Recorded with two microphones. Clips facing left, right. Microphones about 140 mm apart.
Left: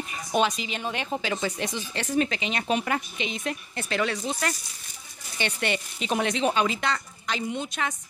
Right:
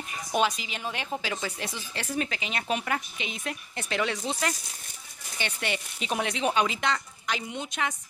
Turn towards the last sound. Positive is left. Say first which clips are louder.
# left 3 dB
turn(degrees=-15)  # may be behind; listen again after turning